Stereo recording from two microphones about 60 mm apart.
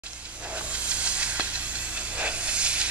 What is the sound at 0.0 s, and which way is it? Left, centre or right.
Hiss, right.